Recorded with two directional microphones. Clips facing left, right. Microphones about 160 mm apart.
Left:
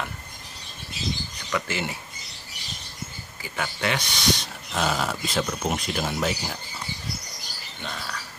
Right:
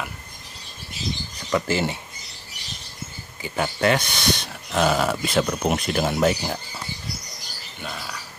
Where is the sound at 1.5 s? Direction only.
35° right (ahead or behind).